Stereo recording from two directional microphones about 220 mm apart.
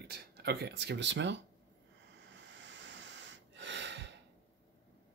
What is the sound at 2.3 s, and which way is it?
Snort, 55° right (ahead or behind).